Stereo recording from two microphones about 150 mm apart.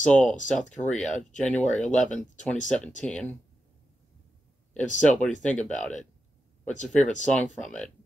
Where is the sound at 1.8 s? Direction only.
5° left (ahead or behind).